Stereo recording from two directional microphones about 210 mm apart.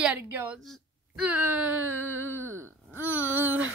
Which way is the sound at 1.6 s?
85° right.